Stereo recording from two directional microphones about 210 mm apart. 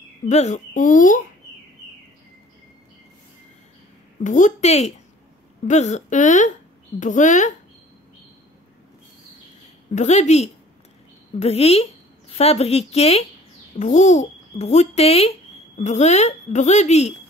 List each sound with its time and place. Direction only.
0.3 s a child's voice: 35° left (ahead or behind)
4.2 s a child's voice: 35° left (ahead or behind)
9.9 s a child's voice: 35° left (ahead or behind)